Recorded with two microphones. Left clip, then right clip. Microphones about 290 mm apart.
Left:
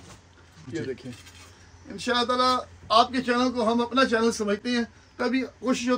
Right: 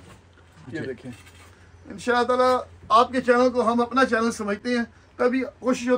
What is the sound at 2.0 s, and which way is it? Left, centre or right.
A man's voice, centre.